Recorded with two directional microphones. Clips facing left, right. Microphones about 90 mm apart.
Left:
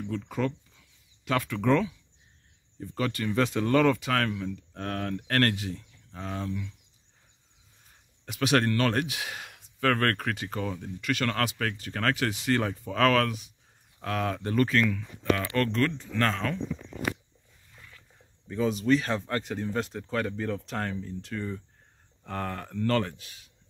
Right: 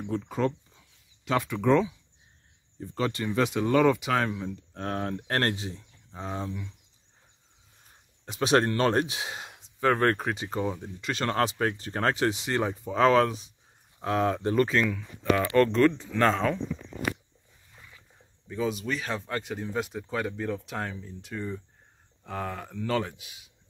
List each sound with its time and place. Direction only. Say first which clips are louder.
0.1 s speech: right 3 dB; 30° right (ahead or behind)
3.0 s speech: even; 25° right (ahead or behind)
8.3 s speech: right 2 dB; 25° right (ahead or behind)
18.5 s speech: left 5 dB; centre (ahead or behind)